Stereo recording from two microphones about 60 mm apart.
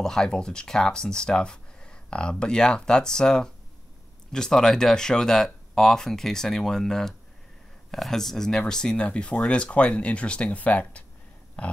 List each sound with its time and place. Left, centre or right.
0.0 s speech: centre